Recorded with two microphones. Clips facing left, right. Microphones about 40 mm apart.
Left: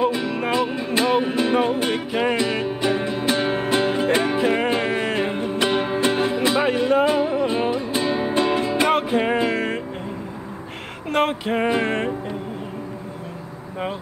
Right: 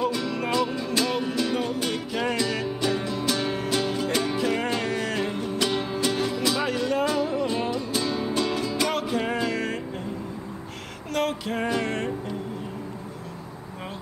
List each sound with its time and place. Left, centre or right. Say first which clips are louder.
0.0 s music: left 5 dB; left
11.1 s music: left 6 dB; left